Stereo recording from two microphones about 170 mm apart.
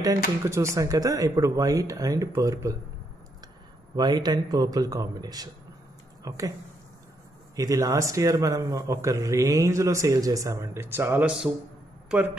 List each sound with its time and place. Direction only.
0.4 s a man's voice: 20° right (ahead or behind)
3.9 s a man's voice: 25° right (ahead or behind)
7.5 s a man's voice: 20° right (ahead or behind)